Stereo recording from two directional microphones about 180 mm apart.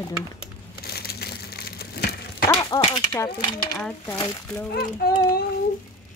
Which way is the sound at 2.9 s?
20° left (ahead or behind).